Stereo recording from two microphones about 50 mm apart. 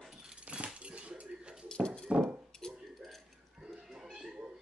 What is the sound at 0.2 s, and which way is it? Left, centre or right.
Dog, centre.